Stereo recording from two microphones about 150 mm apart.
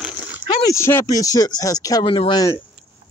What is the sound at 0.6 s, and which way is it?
Speech, 20° left (ahead or behind).